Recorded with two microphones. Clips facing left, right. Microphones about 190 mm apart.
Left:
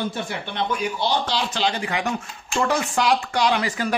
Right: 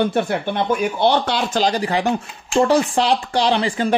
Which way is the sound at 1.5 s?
40° right (ahead or behind).